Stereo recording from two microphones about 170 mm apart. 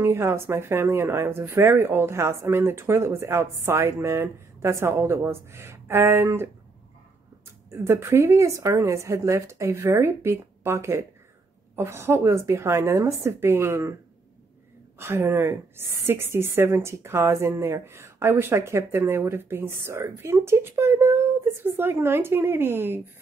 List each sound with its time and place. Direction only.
0.0 s a woman's voice: 15° right (ahead or behind)
7.7 s a woman's voice: 15° right (ahead or behind)
15.0 s a woman's voice: 15° right (ahead or behind)